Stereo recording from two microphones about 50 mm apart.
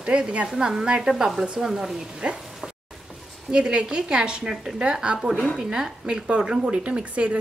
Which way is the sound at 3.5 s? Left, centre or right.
Centre.